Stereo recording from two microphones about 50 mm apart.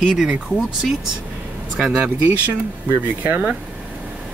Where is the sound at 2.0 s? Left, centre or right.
Right.